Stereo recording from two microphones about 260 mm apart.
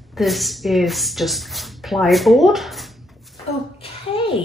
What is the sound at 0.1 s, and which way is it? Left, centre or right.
A woman's voice, centre.